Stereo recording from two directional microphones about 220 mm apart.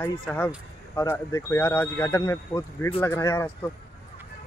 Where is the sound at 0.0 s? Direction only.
10° left (ahead or behind).